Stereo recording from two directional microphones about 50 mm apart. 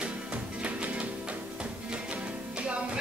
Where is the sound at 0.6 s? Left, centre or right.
Right.